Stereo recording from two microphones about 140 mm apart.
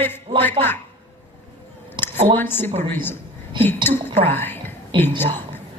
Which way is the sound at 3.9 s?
15° left (ahead or behind).